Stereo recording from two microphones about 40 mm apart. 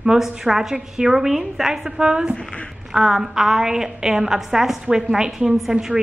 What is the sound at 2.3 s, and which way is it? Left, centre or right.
Speech, centre.